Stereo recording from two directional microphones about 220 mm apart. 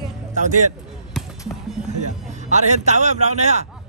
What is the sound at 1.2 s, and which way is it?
Basketball bounce, centre (ahead or behind).